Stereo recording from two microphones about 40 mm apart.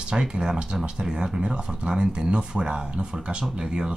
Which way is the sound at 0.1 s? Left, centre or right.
Centre.